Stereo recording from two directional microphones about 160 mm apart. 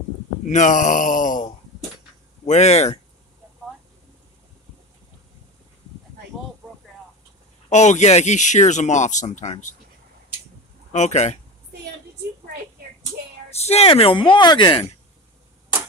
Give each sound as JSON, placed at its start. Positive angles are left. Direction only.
{"t": 0.5, "sound": "speech", "side_deg": 50}
{"t": 2.4, "sound": "speech", "side_deg": 45}
{"t": 7.7, "sound": "speech", "side_deg": 45}
{"t": 10.9, "sound": "speech", "side_deg": 45}
{"t": 13.5, "sound": "speech", "side_deg": 40}